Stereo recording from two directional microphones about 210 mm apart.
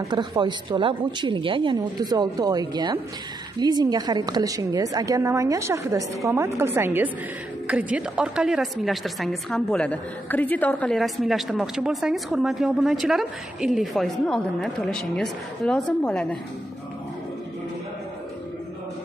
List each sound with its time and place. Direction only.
0.0 s a woman's voice: 20° right (ahead or behind); by 16.3 s 5° left (ahead or behind)